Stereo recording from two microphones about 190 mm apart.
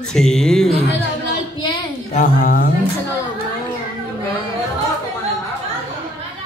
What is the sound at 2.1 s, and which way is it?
Speech, 45° left (ahead or behind).